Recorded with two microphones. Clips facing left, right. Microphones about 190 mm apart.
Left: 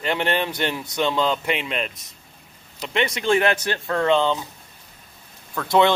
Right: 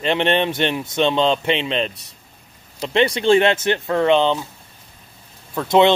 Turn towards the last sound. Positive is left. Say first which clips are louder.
# right 4 dB
turn(degrees=-20)  # may be behind; listen again after turning